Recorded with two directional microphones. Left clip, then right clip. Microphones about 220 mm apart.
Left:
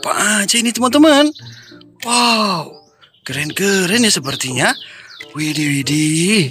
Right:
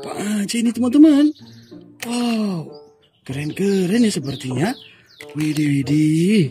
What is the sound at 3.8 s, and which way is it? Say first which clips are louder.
Speech: left 5 dB; 5° right (ahead or behind).